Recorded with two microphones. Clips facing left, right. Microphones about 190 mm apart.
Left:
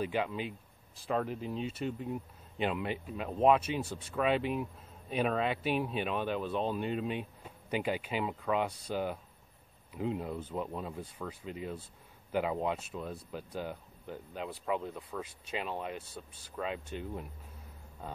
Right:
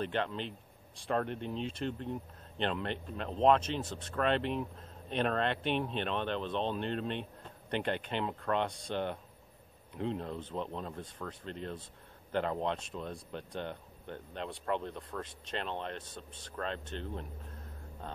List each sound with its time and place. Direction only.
0.0 s speech: 10° left (ahead or behind)